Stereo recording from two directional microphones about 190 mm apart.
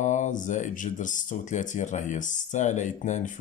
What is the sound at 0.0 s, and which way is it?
Speech, 40° left (ahead or behind).